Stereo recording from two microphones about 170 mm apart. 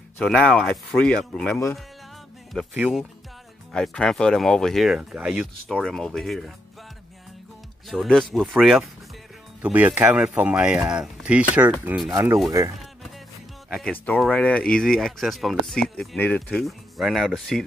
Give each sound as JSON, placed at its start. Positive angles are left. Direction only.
{"t": 0.2, "sound": "speech", "side_deg": 5}
{"t": 7.9, "sound": "speech", "side_deg": 0}
{"t": 13.7, "sound": "speech", "side_deg": 0}